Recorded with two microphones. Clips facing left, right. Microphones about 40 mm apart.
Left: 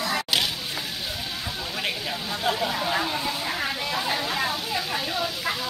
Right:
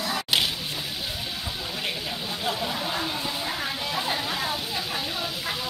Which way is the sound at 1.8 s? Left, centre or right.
Centre.